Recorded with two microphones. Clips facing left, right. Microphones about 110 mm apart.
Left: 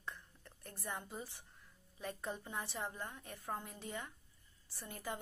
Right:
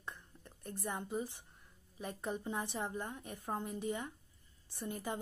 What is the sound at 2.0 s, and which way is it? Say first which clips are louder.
A woman's voice: right 3 dB; 20° right (ahead or behind).